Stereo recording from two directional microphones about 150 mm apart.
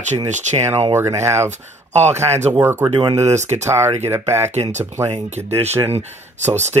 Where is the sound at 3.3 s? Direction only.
50° right (ahead or behind).